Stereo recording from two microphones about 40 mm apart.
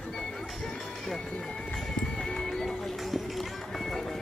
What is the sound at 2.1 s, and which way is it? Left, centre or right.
Music, centre.